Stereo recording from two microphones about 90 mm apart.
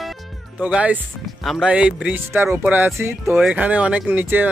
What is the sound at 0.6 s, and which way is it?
Speech, 15° right (ahead or behind).